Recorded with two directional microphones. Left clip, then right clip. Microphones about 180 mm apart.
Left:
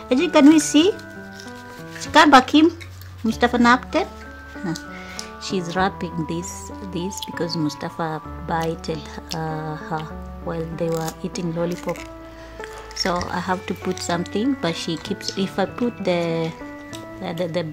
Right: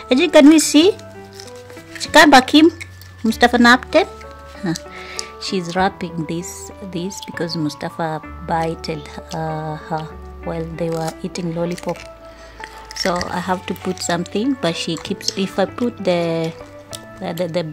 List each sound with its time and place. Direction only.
0.1 s a woman's voice: 20° right (ahead or behind)
2.0 s a woman's voice: 25° right (ahead or behind)
10.9 s speech: 20° left (ahead or behind)
11.2 s speech: 15° right (ahead or behind)
13.3 s speech: 10° right (ahead or behind)